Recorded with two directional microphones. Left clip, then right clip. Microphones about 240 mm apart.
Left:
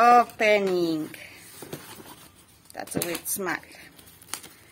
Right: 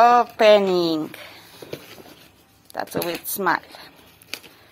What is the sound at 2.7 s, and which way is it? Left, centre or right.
Speech, centre.